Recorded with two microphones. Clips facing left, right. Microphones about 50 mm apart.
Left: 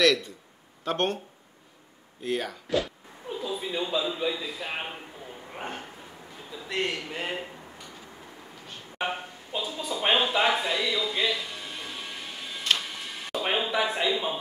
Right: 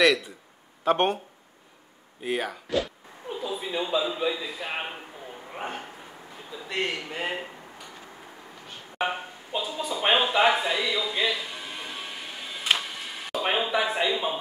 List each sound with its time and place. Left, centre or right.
0.0 s speech: centre
2.2 s a man's voice: centre
5.5 s bow-wow: centre
6.7 s speech: centre
8.6 s a sound: centre